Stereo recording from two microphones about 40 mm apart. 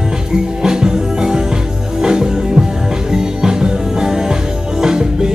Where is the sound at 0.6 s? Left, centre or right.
Centre.